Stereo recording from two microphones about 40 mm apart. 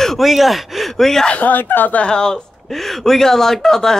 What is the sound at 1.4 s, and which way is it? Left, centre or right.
Speech, left.